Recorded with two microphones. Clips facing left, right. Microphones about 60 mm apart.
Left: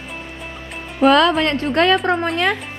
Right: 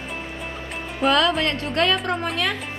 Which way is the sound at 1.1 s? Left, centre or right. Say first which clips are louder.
Left 5 dB; left.